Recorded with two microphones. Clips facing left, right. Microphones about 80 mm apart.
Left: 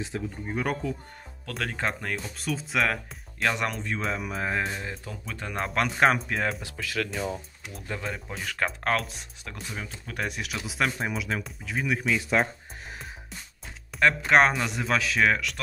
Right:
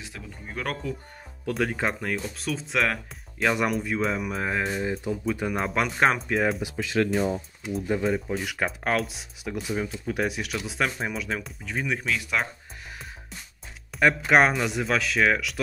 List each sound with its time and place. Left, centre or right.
0.1 s speech: left
0.5 s speech: centre
1.5 s speech: centre
6.6 s speech: right
8.0 s speech: centre
12.2 s speech: left
13.9 s speech: centre